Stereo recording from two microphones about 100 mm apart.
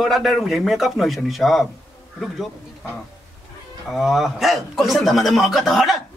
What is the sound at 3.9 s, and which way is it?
Speech, centre (ahead or behind).